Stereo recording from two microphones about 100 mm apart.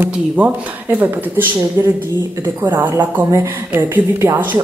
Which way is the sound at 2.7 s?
20° right (ahead or behind).